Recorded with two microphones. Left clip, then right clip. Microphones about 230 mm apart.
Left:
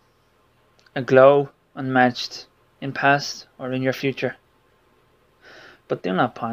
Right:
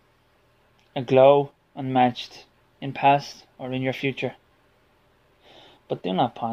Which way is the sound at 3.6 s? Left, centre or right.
Left.